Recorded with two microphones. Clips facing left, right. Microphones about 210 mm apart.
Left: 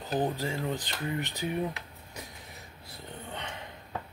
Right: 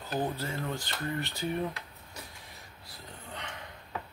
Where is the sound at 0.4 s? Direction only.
15° left (ahead or behind).